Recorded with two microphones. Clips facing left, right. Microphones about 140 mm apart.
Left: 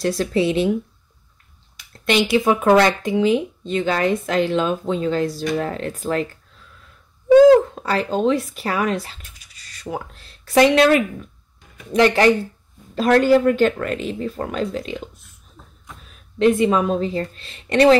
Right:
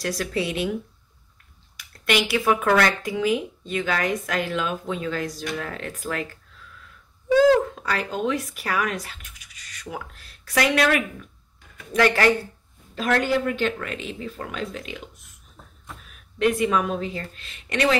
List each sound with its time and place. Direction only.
0.0 s a woman's voice: 25° left (ahead or behind)
1.8 s a woman's voice: 25° left (ahead or behind)
7.7 s a woman's voice: 30° left (ahead or behind)
12.9 s speech: 35° left (ahead or behind)
16.1 s a woman's voice: 25° left (ahead or behind)